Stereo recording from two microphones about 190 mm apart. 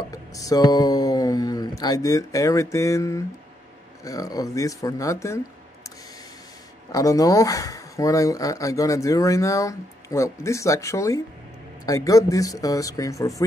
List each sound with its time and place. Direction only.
0.1 s speech: 20° left (ahead or behind)
6.9 s speech: 20° left (ahead or behind)